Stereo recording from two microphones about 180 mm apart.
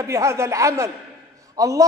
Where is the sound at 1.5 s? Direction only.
20° right (ahead or behind).